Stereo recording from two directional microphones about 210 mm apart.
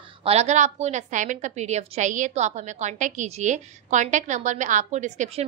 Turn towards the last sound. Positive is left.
turn(degrees=-35)  # may be behind; listen again after turning